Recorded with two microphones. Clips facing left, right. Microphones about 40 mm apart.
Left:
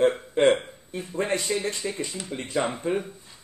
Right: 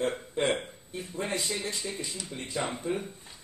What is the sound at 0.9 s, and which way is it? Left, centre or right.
Speech, left.